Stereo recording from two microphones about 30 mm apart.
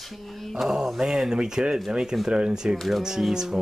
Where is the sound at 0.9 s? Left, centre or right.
Centre.